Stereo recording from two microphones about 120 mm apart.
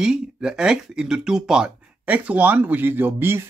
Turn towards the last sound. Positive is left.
turn(degrees=-20)  # may be behind; listen again after turning